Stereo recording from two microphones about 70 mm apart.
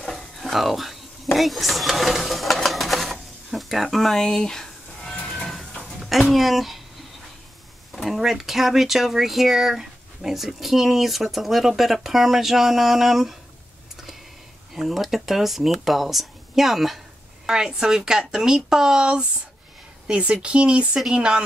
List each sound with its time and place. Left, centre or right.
0.0 s a sound: centre
6.3 s speech: centre
7.9 s speech: centre
14.7 s speech: centre